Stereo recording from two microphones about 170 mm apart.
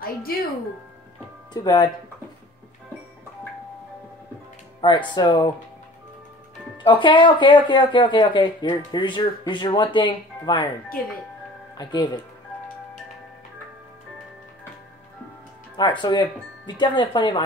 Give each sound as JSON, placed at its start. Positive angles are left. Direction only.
{"t": 0.0, "sound": "speech", "side_deg": 60}
{"t": 1.5, "sound": "speech", "side_deg": 25}
{"t": 4.8, "sound": "speech", "side_deg": 25}
{"t": 6.8, "sound": "speech", "side_deg": 25}
{"t": 11.7, "sound": "speech", "side_deg": 25}
{"t": 15.7, "sound": "speech", "side_deg": 25}